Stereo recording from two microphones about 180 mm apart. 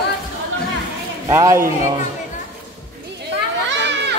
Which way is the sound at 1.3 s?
15° right (ahead or behind).